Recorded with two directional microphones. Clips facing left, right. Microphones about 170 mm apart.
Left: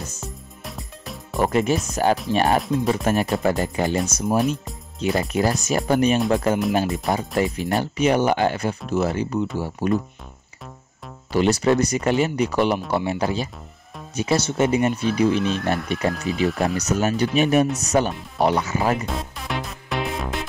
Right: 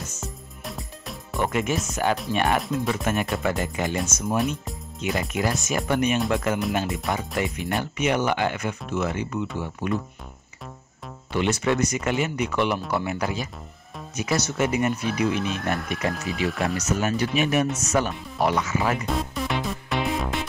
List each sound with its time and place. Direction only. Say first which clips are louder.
0.2 s music: even; centre (ahead or behind)
1.4 s speech: left 5 dB; 35° left (ahead or behind)
4.4 s speech: left 3 dB; centre (ahead or behind)
5.3 s speech: left 4 dB; 35° left (ahead or behind)
11.3 s speech: left 5 dB; 35° left (ahead or behind)
19.0 s music: right 2 dB; centre (ahead or behind)